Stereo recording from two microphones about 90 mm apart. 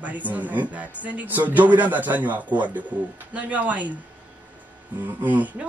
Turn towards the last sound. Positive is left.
turn(degrees=-15)  # may be behind; listen again after turning